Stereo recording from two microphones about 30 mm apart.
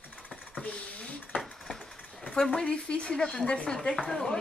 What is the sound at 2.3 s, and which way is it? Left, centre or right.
Speech, left.